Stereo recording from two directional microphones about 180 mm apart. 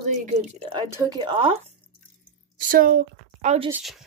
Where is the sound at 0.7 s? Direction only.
20° right (ahead or behind).